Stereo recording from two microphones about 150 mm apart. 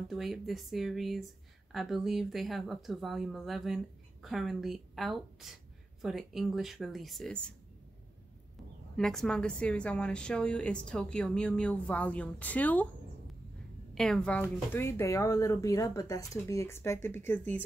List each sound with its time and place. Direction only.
0.1 s speech: centre (ahead or behind)
8.9 s a woman's voice: 5° left (ahead or behind)
13.9 s speech: 5° left (ahead or behind)